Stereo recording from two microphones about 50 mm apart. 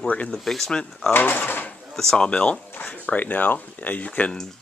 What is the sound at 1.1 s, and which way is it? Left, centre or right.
Speech, left.